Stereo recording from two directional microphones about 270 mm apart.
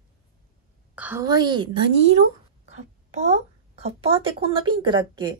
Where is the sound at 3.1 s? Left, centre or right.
Right.